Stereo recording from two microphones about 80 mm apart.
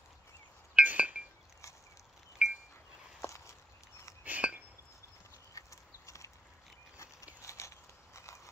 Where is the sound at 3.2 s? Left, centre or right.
Left.